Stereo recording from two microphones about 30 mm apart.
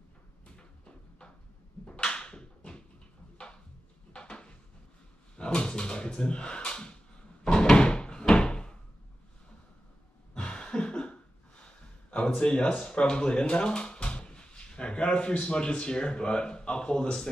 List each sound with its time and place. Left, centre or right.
0.6 s a sound: left
4.1 s a sound: left
5.6 s speech: left
7.7 s door: left
10.3 s cough: left
12.8 s speech: left